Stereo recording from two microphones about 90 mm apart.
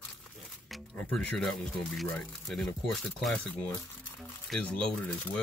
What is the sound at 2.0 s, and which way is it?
Speech, 15° left (ahead or behind).